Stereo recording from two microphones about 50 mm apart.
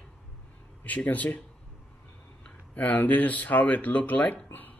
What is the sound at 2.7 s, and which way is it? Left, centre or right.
Speech, left.